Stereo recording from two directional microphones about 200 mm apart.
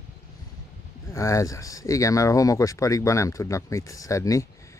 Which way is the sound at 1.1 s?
15° left (ahead or behind).